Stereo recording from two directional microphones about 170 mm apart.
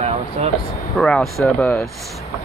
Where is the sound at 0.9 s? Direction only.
Centre (ahead or behind).